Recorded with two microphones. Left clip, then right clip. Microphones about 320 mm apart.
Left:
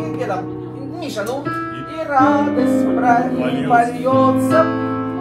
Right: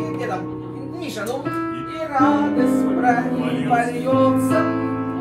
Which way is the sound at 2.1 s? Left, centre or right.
Centre.